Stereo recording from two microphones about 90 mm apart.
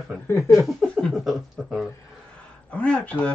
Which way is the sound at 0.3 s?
30° left (ahead or behind).